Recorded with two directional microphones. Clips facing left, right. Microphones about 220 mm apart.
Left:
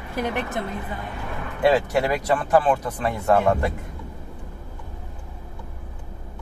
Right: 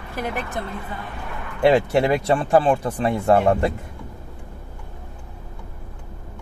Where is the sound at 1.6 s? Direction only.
25° right (ahead or behind).